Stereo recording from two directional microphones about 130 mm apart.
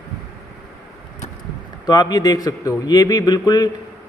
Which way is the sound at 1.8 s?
30° left (ahead or behind).